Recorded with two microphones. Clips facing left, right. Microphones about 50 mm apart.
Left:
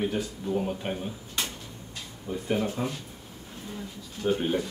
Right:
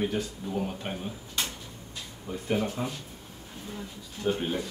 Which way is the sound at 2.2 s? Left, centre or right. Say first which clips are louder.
Left 1 dB; centre.